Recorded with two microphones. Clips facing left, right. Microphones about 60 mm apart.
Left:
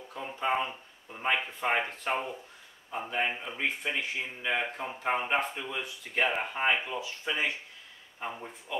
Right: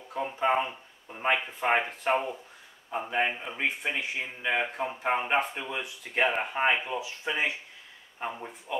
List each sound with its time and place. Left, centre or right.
0.1 s speech: right
0.5 s speech: centre